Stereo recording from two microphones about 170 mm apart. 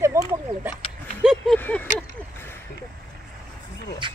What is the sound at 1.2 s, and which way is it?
Speech, 5° right (ahead or behind).